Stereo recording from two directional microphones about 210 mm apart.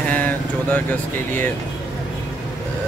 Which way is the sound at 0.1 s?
10° left (ahead or behind).